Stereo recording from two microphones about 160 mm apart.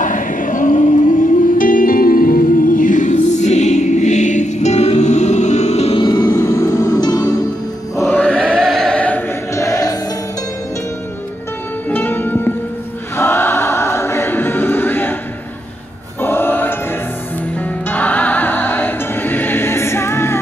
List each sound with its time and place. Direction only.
0.0 s music: 55° left (ahead or behind); by 6.0 s 40° left (ahead or behind)
6.0 s music: 25° left (ahead or behind)
8.1 s choir: 10° left (ahead or behind)
9.7 s music: 20° left (ahead or behind)
11.9 s music: 10° left (ahead or behind)
13.2 s choir: 15° left (ahead or behind)
16.2 s choir: 15° left (ahead or behind)
17.8 s music: 10° left (ahead or behind)